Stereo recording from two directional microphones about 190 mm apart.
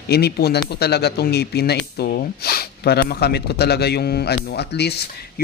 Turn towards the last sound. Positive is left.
turn(degrees=60)  # may be behind; listen again after turning